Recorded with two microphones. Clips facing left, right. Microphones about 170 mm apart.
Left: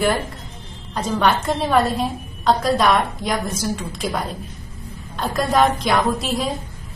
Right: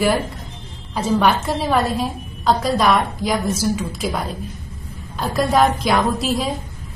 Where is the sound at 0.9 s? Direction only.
5° right (ahead or behind).